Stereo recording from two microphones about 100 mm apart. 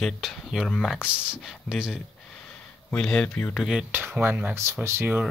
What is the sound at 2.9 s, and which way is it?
Speech, 5° left (ahead or behind).